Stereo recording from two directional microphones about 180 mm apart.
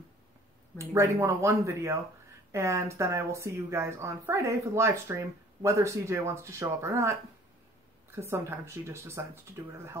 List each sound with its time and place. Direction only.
0.7 s speech: 15° right (ahead or behind)